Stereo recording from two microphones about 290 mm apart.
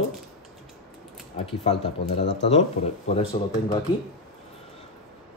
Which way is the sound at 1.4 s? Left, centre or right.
Centre.